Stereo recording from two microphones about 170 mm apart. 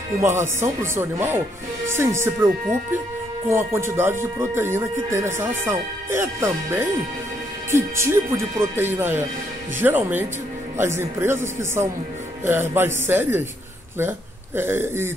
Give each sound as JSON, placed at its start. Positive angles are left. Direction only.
{"t": 0.2, "sound": "speech", "side_deg": -15}